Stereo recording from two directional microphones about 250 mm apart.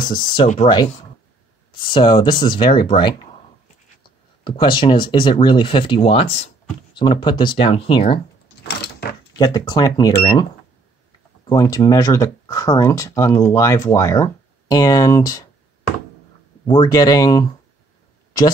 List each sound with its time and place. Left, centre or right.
0.1 s speech: centre
1.9 s speech: centre
4.5 s speech: centre
8.6 s a sound: left
9.4 s speech: centre
11.4 s speech: centre
16.6 s speech: centre